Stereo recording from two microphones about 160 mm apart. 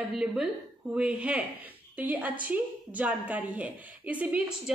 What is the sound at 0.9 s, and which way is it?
A woman's voice, 5° right (ahead or behind).